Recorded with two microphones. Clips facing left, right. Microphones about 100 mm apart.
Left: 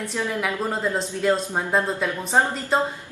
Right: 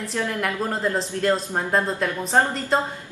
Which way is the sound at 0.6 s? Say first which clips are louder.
Right 1 dB; centre (ahead or behind).